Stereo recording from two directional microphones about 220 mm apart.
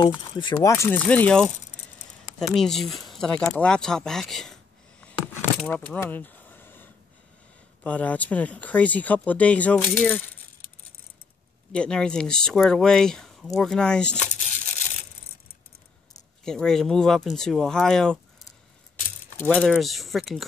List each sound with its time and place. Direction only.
0.0 s speech: 20° left (ahead or behind)
0.8 s speech: 5° left (ahead or behind)
5.0 s a sound: 5° left (ahead or behind)
7.8 s speech: 5° left (ahead or behind)
11.7 s speech: 5° left (ahead or behind)
16.4 s speech: 5° left (ahead or behind)
19.4 s speech: 5° left (ahead or behind)